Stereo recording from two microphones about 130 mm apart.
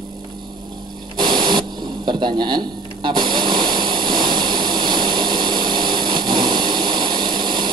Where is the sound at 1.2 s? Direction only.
35° right (ahead or behind).